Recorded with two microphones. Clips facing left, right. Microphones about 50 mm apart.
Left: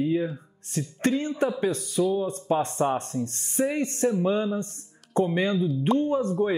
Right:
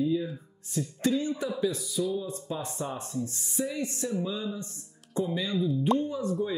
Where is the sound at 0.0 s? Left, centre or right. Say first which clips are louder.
Left 3 dB; left.